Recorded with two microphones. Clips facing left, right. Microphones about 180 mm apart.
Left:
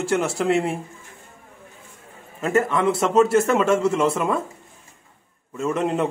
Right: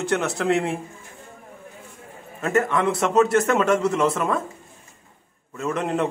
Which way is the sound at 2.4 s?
5° left (ahead or behind).